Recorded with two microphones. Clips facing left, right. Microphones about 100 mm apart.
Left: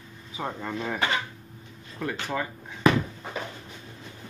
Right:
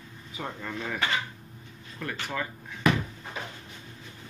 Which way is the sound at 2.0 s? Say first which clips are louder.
Left 3 dB; 15° left (ahead or behind).